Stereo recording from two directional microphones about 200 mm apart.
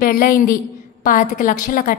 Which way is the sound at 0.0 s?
45° left (ahead or behind).